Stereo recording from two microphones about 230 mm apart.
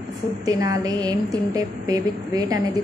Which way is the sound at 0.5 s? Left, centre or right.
Centre.